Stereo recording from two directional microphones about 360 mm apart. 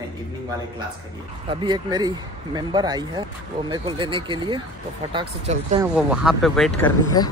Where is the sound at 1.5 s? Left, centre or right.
Centre.